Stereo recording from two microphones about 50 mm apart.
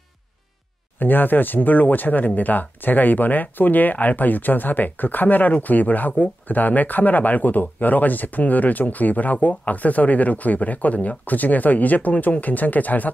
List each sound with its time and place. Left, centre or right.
0.9 s speech: left